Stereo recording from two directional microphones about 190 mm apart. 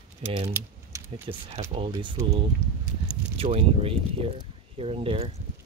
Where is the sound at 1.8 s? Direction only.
25° right (ahead or behind).